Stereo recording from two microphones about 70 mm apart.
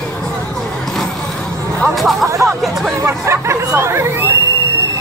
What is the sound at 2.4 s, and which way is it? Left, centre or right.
Chatter, centre.